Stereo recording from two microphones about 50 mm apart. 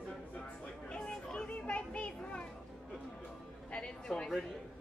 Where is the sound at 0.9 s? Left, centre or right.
Centre.